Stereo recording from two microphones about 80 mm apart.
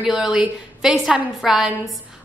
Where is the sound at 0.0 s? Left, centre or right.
Centre.